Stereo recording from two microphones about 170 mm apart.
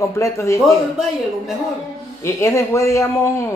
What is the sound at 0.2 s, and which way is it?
Speech, 15° left (ahead or behind).